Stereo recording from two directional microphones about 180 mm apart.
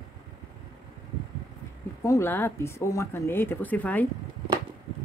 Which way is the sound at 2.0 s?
15° left (ahead or behind).